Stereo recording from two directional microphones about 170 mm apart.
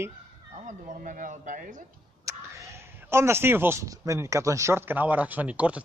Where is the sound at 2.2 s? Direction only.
15° right (ahead or behind).